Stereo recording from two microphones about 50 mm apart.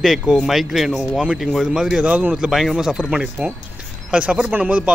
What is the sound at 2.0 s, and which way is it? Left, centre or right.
Speech, right.